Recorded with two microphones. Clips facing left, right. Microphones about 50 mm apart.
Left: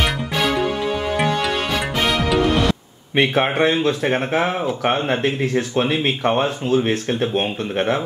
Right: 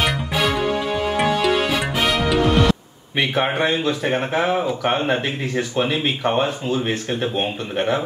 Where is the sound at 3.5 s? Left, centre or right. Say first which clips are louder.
Left 3 dB; left.